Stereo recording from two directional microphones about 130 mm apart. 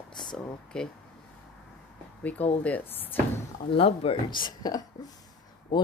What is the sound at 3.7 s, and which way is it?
Speech, 45° left (ahead or behind).